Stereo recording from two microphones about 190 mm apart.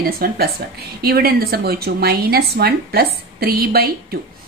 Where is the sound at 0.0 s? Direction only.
55° right (ahead or behind).